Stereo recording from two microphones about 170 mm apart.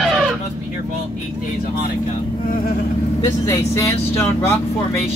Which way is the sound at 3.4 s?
15° left (ahead or behind).